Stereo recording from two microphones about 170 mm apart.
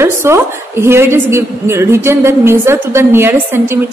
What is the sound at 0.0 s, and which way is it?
A woman's voice, 15° right (ahead or behind).